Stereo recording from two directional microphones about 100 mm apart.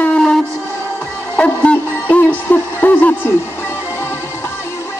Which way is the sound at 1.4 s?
15° left (ahead or behind).